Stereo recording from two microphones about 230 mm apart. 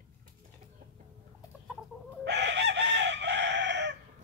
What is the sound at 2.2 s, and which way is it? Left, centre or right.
Chicken, right.